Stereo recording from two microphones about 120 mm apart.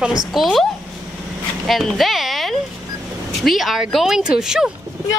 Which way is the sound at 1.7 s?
Centre (ahead or behind).